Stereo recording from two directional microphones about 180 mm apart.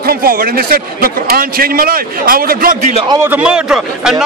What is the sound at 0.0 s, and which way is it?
A man's voice, 55° right (ahead or behind).